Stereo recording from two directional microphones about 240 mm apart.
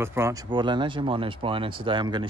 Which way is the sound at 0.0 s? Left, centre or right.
Centre.